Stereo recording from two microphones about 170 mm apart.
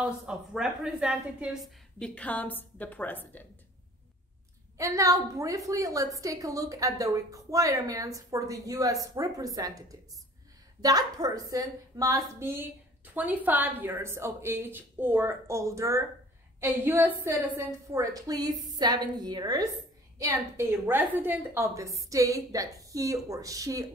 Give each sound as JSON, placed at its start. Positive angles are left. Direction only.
{"t": 0.0, "sound": "a woman's voice", "side_deg": -5}
{"t": 2.0, "sound": "a woman's voice", "side_deg": 5}
{"t": 4.7, "sound": "a woman's voice", "side_deg": -20}